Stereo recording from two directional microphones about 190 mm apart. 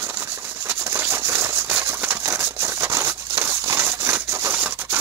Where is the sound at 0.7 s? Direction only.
15° right (ahead or behind).